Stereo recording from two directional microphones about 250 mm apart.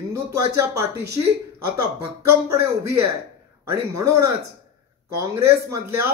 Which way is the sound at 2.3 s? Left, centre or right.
Centre.